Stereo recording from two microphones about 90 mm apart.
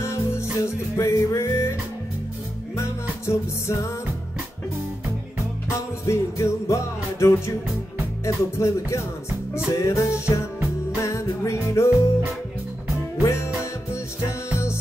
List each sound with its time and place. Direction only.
0.0 s music: 30° left (ahead or behind)
5.7 s music: 35° left (ahead or behind)
13.2 s music: 30° left (ahead or behind)